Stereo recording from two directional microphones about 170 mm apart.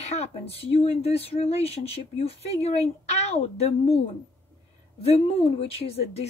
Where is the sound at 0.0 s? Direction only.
40° left (ahead or behind).